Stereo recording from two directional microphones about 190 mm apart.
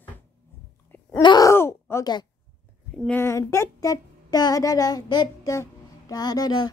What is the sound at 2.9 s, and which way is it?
Speech, 5° left (ahead or behind).